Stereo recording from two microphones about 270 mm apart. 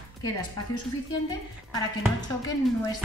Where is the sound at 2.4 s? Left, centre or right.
Centre.